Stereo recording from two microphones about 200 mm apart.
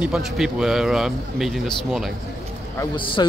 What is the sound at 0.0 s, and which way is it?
Speech, 5° right (ahead or behind).